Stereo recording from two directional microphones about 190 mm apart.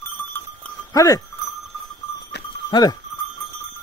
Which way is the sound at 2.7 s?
20° left (ahead or behind).